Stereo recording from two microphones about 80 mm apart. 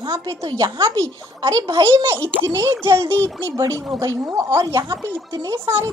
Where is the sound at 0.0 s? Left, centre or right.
Right.